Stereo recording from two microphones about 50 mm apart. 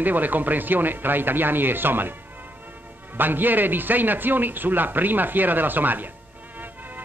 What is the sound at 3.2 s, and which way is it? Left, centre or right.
Speech, right.